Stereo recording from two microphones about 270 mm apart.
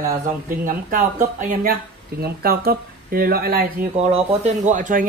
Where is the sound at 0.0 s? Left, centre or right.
Right.